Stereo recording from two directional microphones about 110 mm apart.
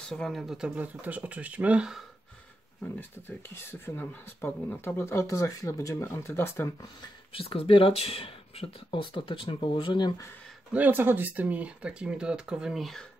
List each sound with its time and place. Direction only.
0.0 s speech: 5° left (ahead or behind)
2.8 s speech: 20° left (ahead or behind)
7.3 s speech: 60° left (ahead or behind)
10.7 s speech: 15° right (ahead or behind); by 13.0 s centre (ahead or behind)